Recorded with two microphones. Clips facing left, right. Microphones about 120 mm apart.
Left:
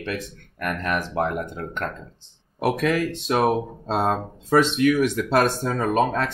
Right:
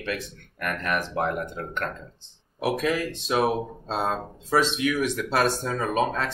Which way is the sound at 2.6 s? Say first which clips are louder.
Left 3 dB; 55° left (ahead or behind).